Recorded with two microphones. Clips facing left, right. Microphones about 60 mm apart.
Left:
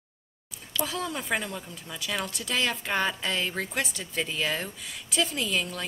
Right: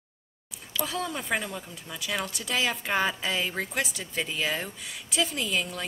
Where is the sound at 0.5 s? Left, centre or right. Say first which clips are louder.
Even; centre.